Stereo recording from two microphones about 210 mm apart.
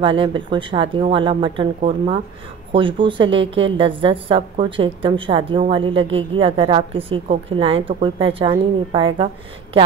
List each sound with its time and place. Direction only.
0.2 s a woman's voice: 25° right (ahead or behind)